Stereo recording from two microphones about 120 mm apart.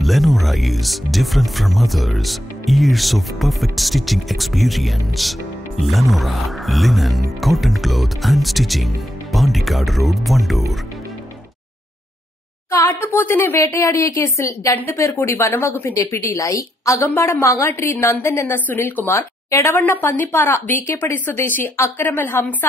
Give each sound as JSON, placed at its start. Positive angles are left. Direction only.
{"t": 0.0, "sound": "speech", "side_deg": 0}
{"t": 12.7, "sound": "a woman's voice", "side_deg": 20}